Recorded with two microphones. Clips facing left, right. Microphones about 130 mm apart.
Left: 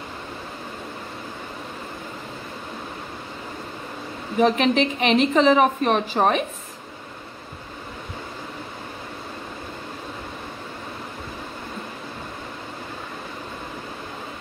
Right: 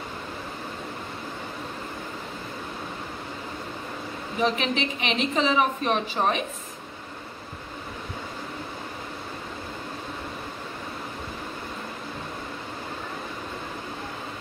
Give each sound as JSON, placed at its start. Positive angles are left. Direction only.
{"t": 4.4, "sound": "a woman's voice", "side_deg": 45}